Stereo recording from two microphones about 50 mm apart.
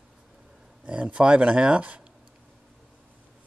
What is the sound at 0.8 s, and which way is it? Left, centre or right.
Speech, right.